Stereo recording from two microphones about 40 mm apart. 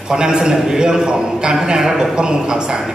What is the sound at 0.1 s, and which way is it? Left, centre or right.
A man's voice, centre.